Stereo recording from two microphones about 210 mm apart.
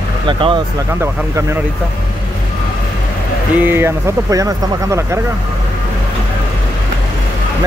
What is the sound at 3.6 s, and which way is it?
Speech, 10° right (ahead or behind).